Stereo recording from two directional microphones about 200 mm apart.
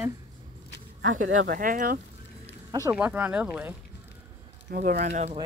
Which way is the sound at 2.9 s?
5° right (ahead or behind).